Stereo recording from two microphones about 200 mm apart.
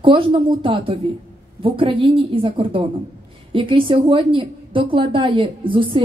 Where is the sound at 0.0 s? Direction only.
25° right (ahead or behind).